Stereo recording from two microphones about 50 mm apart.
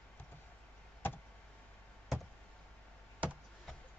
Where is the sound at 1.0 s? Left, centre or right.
Left.